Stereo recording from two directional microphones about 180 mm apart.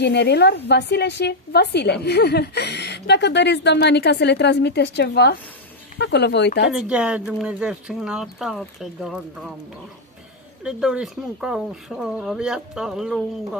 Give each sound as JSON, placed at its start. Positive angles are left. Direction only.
{"t": 0.0, "sound": "a woman's voice", "side_deg": 70}
{"t": 6.7, "sound": "speech", "side_deg": -5}
{"t": 10.6, "sound": "speech", "side_deg": -5}